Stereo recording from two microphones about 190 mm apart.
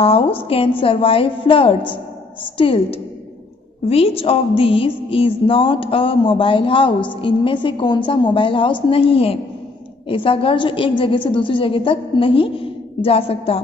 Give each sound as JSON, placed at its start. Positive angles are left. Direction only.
{"t": 0.0, "sound": "speech", "side_deg": 30}